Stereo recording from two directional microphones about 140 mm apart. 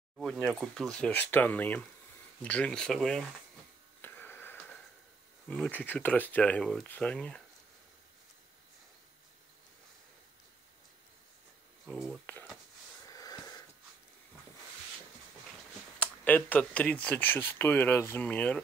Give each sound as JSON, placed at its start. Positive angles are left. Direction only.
{"t": 0.2, "sound": "speech", "side_deg": 5}
{"t": 4.0, "sound": "radio", "side_deg": 15}
{"t": 5.5, "sound": "speech", "side_deg": 10}
{"t": 11.8, "sound": "speech", "side_deg": 0}
{"t": 13.1, "sound": "wheeze", "side_deg": 25}
{"t": 16.0, "sound": "speech", "side_deg": 10}